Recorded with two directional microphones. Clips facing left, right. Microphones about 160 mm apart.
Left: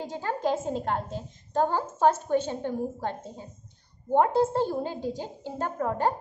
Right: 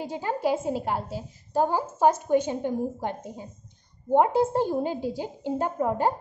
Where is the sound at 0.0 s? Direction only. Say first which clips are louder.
Right 2 dB; 15° right (ahead or behind).